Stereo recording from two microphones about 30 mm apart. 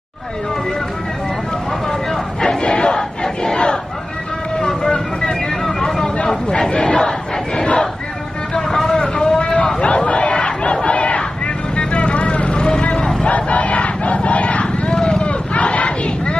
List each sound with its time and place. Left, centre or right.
2.4 s crowd: left
4.6 s vehicle: left
6.6 s crowd: left
8.6 s vehicle: centre
9.4 s a sound: left
9.8 s battle cry: left
12.5 s vehicle: left
13.3 s battle cry: left
15.0 s vehicle: left
15.5 s battle cry: left